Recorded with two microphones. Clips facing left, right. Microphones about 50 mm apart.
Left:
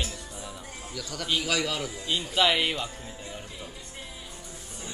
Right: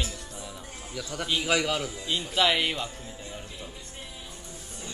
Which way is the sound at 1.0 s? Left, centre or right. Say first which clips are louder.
Even; right.